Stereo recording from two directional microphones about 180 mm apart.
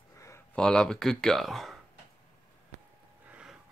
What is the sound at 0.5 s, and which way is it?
Speech, 5° left (ahead or behind).